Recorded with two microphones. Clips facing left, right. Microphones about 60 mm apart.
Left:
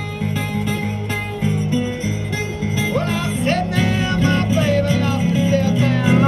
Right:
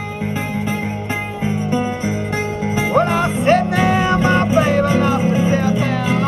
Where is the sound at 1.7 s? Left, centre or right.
Right.